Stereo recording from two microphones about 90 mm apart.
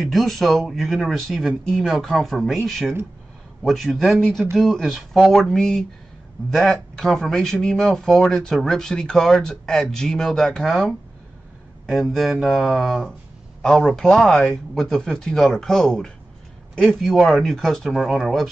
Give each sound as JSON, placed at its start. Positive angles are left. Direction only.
{"t": 0.0, "sound": "speech", "side_deg": 0}